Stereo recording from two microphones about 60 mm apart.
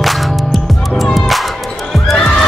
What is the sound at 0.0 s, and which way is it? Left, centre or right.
Music, centre.